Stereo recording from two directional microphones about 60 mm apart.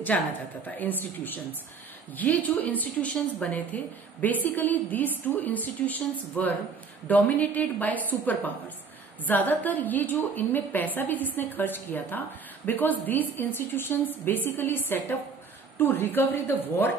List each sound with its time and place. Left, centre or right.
0.1 s a woman's voice: centre; by 16.9 s left